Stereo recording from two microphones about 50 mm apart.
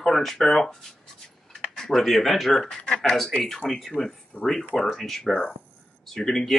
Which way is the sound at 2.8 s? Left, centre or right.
Centre.